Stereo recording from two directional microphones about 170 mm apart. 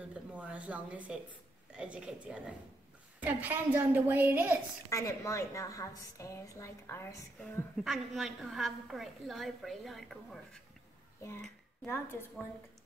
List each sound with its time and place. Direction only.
0.1 s a woman's voice: 5° right (ahead or behind)
4.8 s a woman's voice: 20° left (ahead or behind)
7.7 s a woman's voice: centre (ahead or behind)
11.4 s speech: 10° left (ahead or behind)